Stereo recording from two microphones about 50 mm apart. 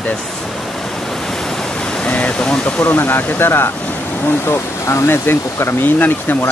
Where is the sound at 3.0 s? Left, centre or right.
Left.